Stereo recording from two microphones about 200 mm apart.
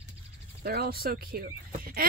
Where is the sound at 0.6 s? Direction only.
50° right (ahead or behind).